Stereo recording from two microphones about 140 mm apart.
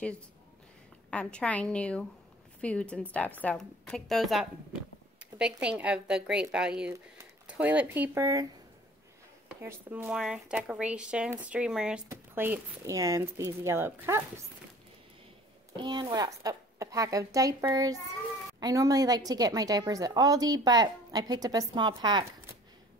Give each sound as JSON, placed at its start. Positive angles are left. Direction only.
{"t": 1.1, "sound": "a woman's voice", "side_deg": 10}
{"t": 5.6, "sound": "speech", "side_deg": -10}
{"t": 9.6, "sound": "speech", "side_deg": -15}
{"t": 12.1, "sound": "a woman's voice", "side_deg": -20}
{"t": 15.7, "sound": "a woman's voice", "side_deg": -35}